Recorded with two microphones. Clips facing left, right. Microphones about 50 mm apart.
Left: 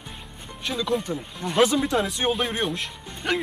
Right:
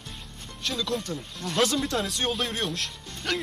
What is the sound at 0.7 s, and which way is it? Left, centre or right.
Speech, centre.